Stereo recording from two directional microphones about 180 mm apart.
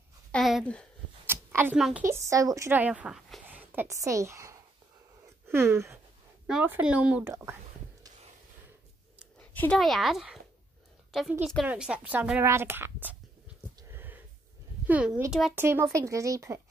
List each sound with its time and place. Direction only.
0.3 s speech: centre (ahead or behind)
1.2 s a sound: 10° right (ahead or behind)
1.8 s speech: centre (ahead or behind)
2.0 s a woman's voice: 15° right (ahead or behind)
9.4 s a woman's voice: 5° left (ahead or behind); by 13.1 s 10° right (ahead or behind)
13.8 s a sound: 10° right (ahead or behind)
14.9 s a woman's voice: 10° right (ahead or behind)
15.6 s a woman's voice: 15° right (ahead or behind)